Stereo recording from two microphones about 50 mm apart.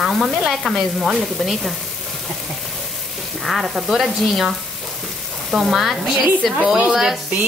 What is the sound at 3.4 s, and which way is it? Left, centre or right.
Sizzle, centre.